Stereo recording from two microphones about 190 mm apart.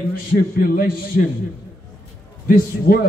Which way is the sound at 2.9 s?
50° left (ahead or behind).